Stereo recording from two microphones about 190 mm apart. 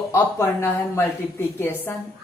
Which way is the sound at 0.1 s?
15° left (ahead or behind).